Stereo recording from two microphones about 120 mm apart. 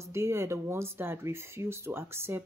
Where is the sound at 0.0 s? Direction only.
25° right (ahead or behind).